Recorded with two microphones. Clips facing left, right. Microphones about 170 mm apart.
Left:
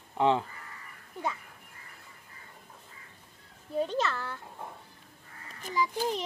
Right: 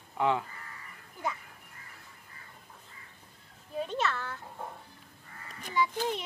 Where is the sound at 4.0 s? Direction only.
35° left (ahead or behind).